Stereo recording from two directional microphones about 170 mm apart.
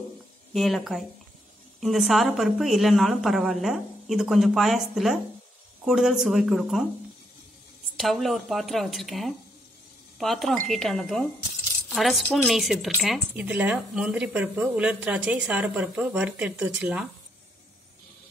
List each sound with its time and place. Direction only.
0.5 s a woman's voice: centre (ahead or behind)
8.0 s a woman's voice: centre (ahead or behind)